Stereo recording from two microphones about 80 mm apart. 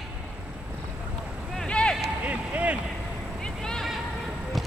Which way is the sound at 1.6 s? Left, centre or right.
Centre.